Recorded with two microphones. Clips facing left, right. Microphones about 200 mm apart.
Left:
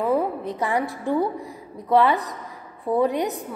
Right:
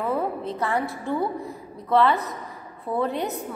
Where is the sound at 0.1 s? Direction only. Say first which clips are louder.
Left 3 dB; 15° left (ahead or behind).